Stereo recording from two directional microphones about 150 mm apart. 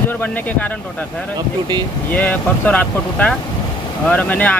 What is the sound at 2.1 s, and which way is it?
Speech, 10° left (ahead or behind).